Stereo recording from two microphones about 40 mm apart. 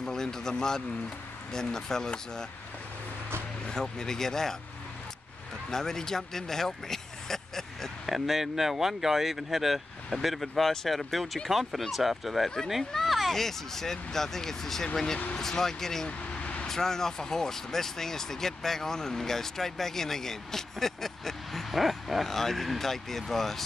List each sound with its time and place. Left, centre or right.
0.0 s speech: centre
3.6 s speech: centre
5.7 s speech: centre
8.1 s speech: centre
16.1 s vehicle: left
16.6 s speech: centre